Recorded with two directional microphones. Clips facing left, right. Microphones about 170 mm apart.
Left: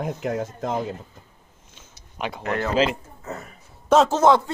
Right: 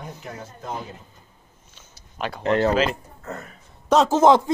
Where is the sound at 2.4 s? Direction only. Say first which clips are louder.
Right 7 dB; 30° right (ahead or behind).